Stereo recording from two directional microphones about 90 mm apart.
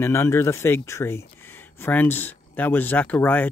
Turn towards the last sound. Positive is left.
turn(degrees=20)  # may be behind; listen again after turning